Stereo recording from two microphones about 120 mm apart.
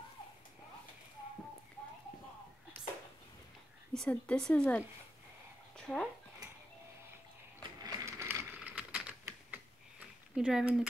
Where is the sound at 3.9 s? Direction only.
10° left (ahead or behind).